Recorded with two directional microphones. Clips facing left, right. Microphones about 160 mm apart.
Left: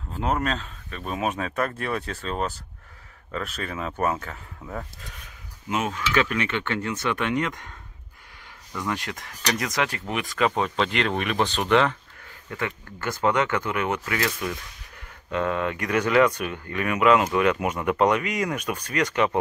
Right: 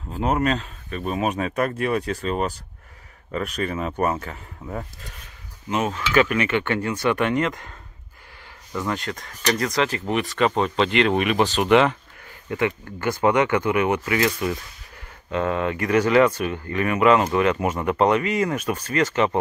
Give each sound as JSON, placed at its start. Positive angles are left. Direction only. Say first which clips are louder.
{"t": 0.1, "sound": "speech", "louder": "right 4 dB", "side_deg": -5}
{"t": 5.7, "sound": "speech", "louder": "right 3 dB", "side_deg": 0}
{"t": 8.7, "sound": "speech", "louder": "right 3 dB", "side_deg": 0}
{"t": 11.1, "sound": "speech", "louder": "right 5 dB", "side_deg": -10}